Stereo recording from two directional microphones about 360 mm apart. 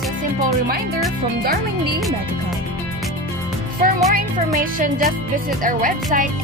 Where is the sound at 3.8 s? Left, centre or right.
Right.